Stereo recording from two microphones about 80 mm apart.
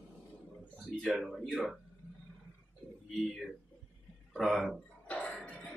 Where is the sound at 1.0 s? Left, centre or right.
Centre.